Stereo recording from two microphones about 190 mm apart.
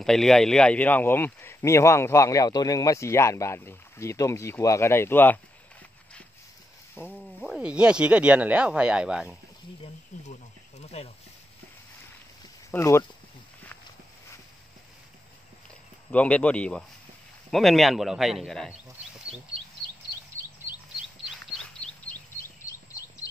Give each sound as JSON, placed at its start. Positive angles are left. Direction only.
{"t": 0.0, "sound": "speech", "side_deg": 0}
{"t": 7.0, "sound": "speech", "side_deg": 10}
{"t": 7.3, "sound": "speech", "side_deg": -5}
{"t": 10.1, "sound": "a sound", "side_deg": 40}
{"t": 12.7, "sound": "speech", "side_deg": 15}
{"t": 16.1, "sound": "speech", "side_deg": 5}
{"t": 21.5, "sound": "a sound", "side_deg": 5}